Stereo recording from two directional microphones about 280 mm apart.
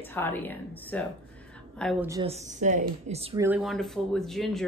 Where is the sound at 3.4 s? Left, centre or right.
Centre.